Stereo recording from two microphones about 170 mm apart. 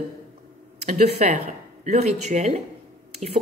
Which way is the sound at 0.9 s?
45° right (ahead or behind).